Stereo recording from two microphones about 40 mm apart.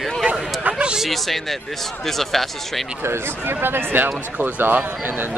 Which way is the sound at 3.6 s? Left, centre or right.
Right.